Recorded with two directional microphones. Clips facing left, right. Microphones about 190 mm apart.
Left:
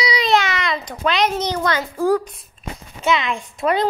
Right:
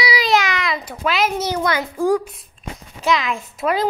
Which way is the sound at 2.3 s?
Centre (ahead or behind).